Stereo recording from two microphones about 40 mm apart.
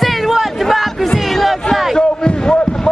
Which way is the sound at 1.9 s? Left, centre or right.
Centre.